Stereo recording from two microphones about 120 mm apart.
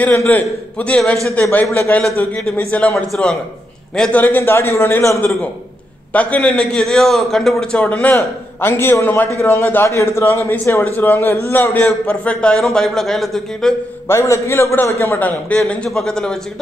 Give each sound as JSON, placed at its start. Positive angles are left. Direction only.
{"t": 0.0, "sound": "a man's voice", "side_deg": 15}
{"t": 14.0, "sound": "a man's voice", "side_deg": 20}